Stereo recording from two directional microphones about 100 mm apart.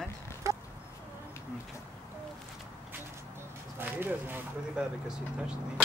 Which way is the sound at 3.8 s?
20° right (ahead or behind).